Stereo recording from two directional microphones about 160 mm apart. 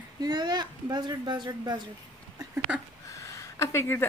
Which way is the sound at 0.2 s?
25° right (ahead or behind).